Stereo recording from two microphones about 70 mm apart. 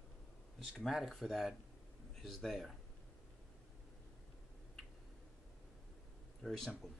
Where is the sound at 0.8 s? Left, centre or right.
Centre.